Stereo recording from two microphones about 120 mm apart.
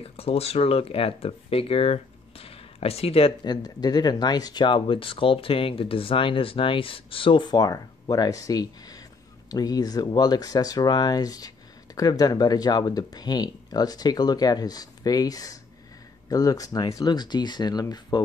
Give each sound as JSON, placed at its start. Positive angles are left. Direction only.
{"t": 0.0, "sound": "speech", "side_deg": 55}
{"t": 3.4, "sound": "speech", "side_deg": 35}